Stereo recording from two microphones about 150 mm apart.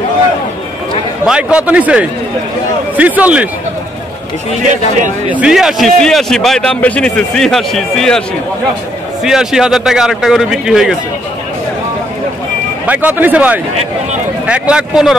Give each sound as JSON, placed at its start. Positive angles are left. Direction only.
{"t": 1.2, "sound": "a man's voice", "side_deg": -5}
{"t": 4.6, "sound": "speech", "side_deg": -55}
{"t": 5.3, "sound": "a man's voice", "side_deg": -5}
{"t": 9.2, "sound": "a man's voice", "side_deg": -5}
{"t": 12.8, "sound": "a man's voice", "side_deg": -10}